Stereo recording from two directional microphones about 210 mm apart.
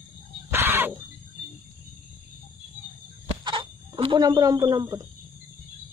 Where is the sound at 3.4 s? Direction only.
25° right (ahead or behind).